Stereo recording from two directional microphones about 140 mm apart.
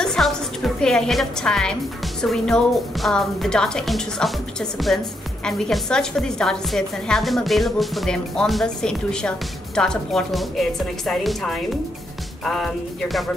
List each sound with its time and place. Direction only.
0.0 s music: centre (ahead or behind)
2.2 s a woman's voice: 5° left (ahead or behind)